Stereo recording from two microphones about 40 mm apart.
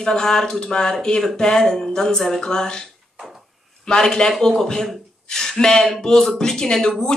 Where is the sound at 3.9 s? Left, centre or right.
Centre.